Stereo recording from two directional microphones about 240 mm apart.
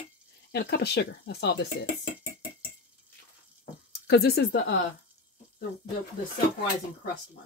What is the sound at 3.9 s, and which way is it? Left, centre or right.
Speech, left.